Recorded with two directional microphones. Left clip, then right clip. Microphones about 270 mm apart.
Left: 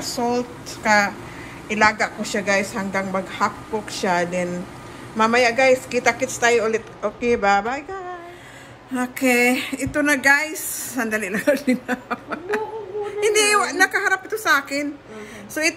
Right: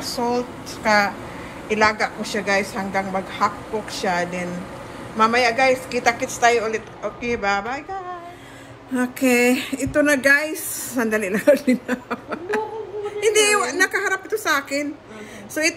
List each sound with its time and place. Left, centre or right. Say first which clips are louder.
0.0 s speech: even; centre